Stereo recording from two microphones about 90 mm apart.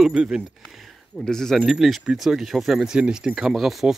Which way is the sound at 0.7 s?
Centre (ahead or behind).